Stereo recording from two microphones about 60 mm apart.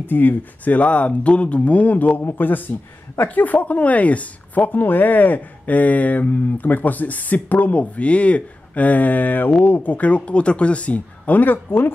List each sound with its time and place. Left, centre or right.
0.0 s speech: left